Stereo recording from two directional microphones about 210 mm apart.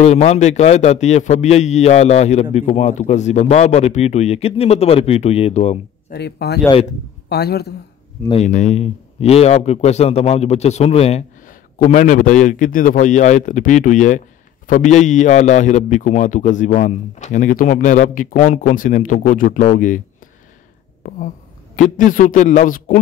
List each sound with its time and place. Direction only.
0.0 s a man's voice: 30° left (ahead or behind)
6.1 s a man's voice: 50° left (ahead or behind)
8.3 s a man's voice: 35° left (ahead or behind)
21.0 s a man's voice: 40° left (ahead or behind)